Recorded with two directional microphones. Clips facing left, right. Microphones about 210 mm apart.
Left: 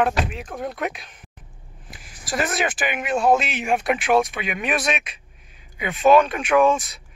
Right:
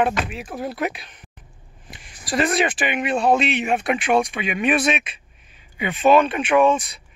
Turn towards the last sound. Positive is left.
turn(degrees=0)  # may be behind; listen again after turning